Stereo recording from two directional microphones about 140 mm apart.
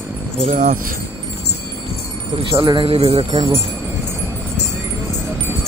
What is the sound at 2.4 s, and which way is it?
Speech, 35° right (ahead or behind).